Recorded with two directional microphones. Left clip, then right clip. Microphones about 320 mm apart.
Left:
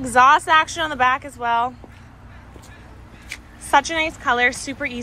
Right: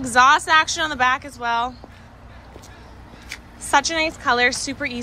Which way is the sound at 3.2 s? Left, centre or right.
Centre.